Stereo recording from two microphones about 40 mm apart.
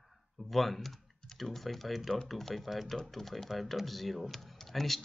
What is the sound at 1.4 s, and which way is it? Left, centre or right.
Speech, centre.